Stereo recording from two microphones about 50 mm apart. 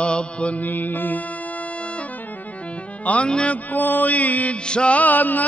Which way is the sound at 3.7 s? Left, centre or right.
Left.